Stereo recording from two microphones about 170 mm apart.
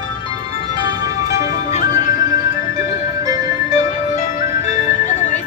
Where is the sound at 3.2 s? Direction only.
20° right (ahead or behind).